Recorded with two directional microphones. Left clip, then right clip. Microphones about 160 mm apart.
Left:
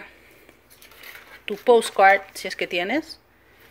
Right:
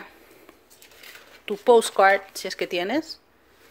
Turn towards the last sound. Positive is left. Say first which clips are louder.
# left 1 dB
turn(degrees=-15)  # may be behind; listen again after turning